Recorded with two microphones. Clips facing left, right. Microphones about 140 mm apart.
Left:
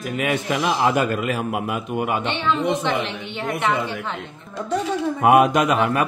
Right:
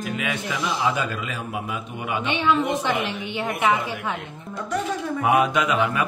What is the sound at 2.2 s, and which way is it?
A woman's voice, 10° right (ahead or behind).